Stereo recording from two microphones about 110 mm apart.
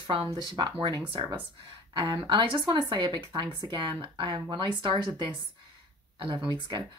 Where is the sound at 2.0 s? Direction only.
45° right (ahead or behind).